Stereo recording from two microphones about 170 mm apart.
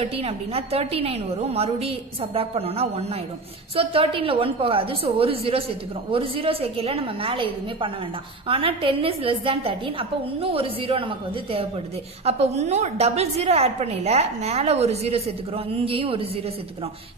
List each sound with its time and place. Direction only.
0.0 s a woman's voice: 35° right (ahead or behind)